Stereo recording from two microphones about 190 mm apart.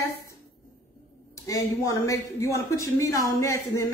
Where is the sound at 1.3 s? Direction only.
15° left (ahead or behind).